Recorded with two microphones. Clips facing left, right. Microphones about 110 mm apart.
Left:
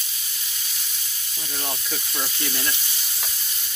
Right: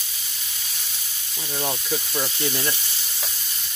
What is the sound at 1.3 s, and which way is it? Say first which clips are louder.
Sizzle: right 6 dB; 30° right (ahead or behind).